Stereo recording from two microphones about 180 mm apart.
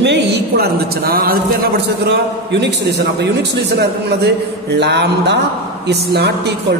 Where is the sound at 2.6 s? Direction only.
65° right (ahead or behind).